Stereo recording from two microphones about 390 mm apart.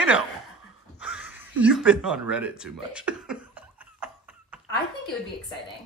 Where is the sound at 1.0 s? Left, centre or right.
Centre.